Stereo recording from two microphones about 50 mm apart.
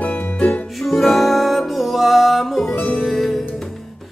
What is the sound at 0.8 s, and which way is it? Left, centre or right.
Music, centre.